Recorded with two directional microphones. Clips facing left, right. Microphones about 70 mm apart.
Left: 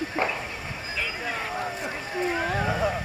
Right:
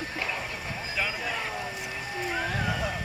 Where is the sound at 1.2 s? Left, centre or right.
Left.